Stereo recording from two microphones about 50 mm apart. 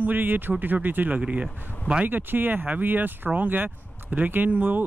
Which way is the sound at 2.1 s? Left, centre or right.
Right.